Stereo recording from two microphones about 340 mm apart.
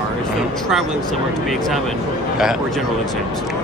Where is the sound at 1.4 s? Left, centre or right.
Centre.